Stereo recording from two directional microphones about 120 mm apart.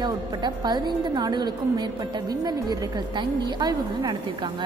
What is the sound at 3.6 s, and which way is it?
Speech, 40° right (ahead or behind).